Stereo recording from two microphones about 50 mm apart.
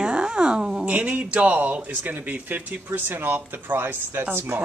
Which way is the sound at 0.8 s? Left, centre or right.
Right.